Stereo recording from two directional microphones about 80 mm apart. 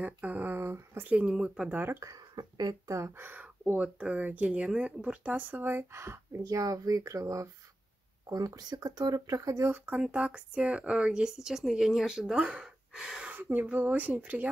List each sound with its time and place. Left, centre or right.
0.0 s speech: right
1.0 s speech: centre
1.7 s speech: right
2.0 s speech: right
3.2 s speech: right
6.4 s speech: right
9.7 s speech: centre
13.3 s speech: right